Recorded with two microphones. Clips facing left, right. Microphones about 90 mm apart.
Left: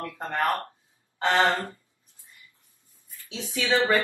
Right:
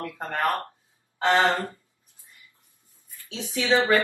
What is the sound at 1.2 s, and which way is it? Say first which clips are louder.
Speech: right 1 dB; 20° right (ahead or behind).